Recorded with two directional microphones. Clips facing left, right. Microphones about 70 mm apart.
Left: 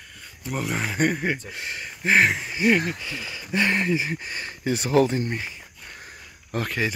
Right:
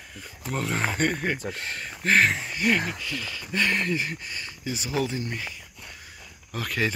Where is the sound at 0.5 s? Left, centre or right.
Centre.